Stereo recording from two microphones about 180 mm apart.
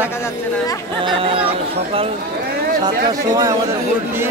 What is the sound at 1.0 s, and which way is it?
Speech, 30° right (ahead or behind).